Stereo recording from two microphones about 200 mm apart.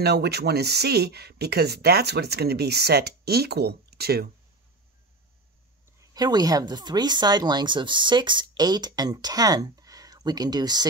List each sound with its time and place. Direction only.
0.0 s speech: 55° right (ahead or behind)
6.1 s speech: 20° right (ahead or behind)